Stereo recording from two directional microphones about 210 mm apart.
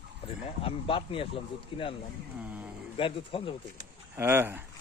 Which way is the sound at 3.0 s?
25° left (ahead or behind).